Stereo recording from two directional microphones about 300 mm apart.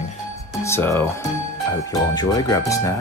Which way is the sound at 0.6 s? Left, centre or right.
Centre.